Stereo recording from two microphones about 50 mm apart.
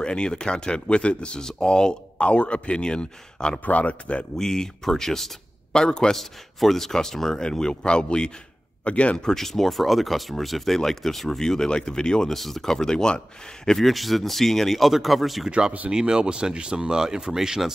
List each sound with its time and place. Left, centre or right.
0.0 s speech: centre
3.6 s speech: left
4.4 s speech: centre
6.1 s speech: centre; by 9.3 s left
9.3 s speech: centre
12.4 s speech: centre
13.7 s speech: centre
15.9 s speech: centre